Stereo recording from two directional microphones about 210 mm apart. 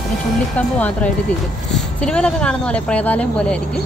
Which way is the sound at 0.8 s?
5° left (ahead or behind).